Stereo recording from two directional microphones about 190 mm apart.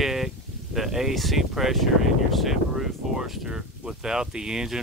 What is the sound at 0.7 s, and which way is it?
Speech, centre (ahead or behind).